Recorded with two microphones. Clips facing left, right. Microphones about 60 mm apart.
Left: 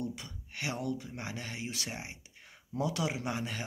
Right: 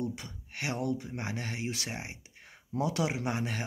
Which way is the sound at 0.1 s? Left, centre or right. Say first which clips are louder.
Right 2 dB; right.